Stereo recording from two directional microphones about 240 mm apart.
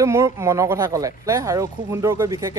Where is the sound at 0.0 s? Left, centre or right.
Centre.